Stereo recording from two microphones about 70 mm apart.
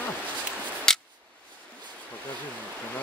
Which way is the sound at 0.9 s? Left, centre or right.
Centre.